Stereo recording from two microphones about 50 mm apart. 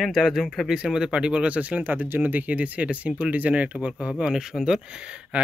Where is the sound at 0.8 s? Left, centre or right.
Centre; by 3.7 s right.